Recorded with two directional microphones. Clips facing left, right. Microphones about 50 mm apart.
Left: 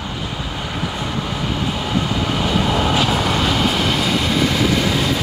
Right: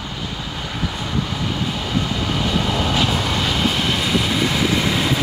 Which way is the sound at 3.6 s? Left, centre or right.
Centre.